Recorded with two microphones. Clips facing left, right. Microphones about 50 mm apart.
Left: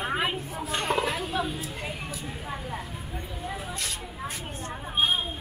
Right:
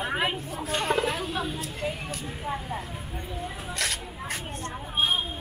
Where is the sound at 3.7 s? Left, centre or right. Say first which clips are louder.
Right 3 dB; right.